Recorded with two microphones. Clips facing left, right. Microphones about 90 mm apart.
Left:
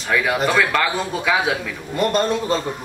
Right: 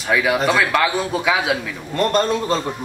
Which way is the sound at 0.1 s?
5° right (ahead or behind).